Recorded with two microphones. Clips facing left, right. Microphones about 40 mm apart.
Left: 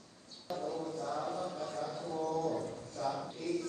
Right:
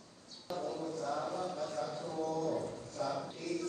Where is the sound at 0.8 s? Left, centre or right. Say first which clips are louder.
Even; left.